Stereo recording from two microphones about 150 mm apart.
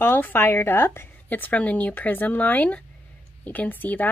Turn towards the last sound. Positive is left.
turn(degrees=10)  # may be behind; listen again after turning